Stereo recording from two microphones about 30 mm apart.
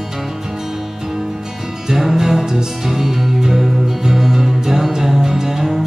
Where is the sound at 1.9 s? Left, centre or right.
Centre.